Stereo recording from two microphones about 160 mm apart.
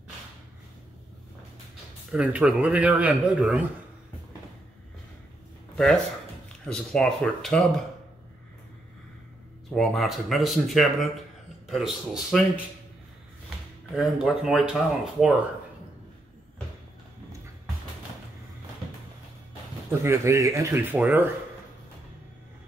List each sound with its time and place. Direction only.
2.1 s speech: 10° right (ahead or behind)
6.6 s speech: 5° left (ahead or behind)
9.8 s speech: centre (ahead or behind)
13.9 s speech: centre (ahead or behind)
20.0 s speech: 20° right (ahead or behind)